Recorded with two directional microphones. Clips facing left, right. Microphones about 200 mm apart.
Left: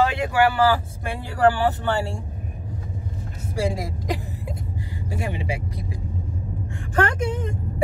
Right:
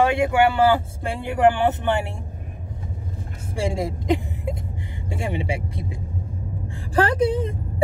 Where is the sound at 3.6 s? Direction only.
25° right (ahead or behind).